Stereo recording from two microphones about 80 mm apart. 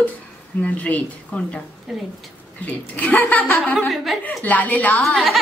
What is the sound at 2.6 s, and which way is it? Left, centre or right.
Speech, centre.